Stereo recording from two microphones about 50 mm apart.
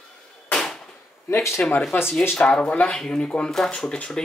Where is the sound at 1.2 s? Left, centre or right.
Left.